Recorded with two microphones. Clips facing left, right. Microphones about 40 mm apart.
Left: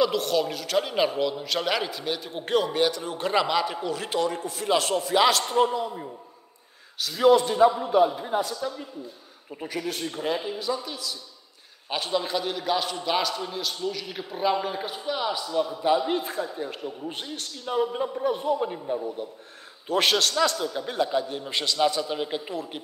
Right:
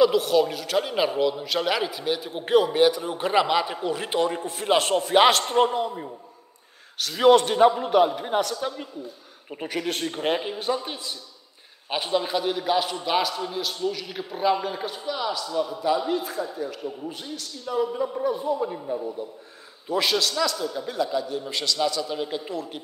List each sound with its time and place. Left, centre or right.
0.0 s a man's voice: centre; by 5.9 s right
7.0 s a man's voice: right
11.9 s a man's voice: centre
16.1 s a man's voice: left
18.2 s a man's voice: left
22.1 s a man's voice: centre